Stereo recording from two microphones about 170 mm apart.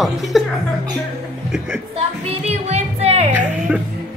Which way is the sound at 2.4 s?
40° right (ahead or behind).